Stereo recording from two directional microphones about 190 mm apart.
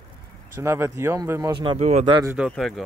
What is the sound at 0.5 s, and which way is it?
Speech, 15° right (ahead or behind).